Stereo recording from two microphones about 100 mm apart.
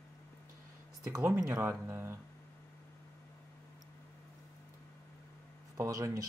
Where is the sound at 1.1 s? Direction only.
30° right (ahead or behind).